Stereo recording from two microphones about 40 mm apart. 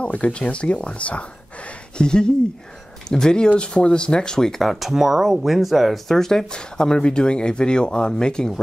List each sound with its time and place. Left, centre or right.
0.0 s speech: left
2.0 s speech: left; by 5.9 s centre
6.0 s speech: centre